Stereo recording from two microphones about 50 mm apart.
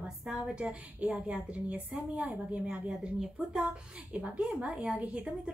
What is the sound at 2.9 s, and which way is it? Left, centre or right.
Speech, centre.